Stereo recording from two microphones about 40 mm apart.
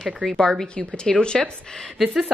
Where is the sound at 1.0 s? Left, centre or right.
Left.